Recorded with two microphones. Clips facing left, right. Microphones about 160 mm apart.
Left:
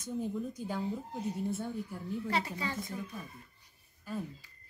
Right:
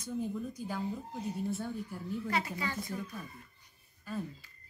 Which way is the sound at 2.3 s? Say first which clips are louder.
Even; 30° left (ahead or behind).